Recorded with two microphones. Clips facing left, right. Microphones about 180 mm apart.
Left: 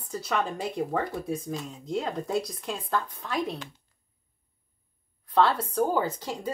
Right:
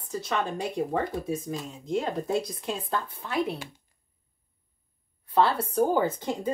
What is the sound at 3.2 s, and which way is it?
Speech, 5° right (ahead or behind).